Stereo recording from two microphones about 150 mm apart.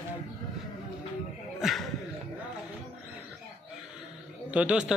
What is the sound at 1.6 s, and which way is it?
Speech, centre (ahead or behind).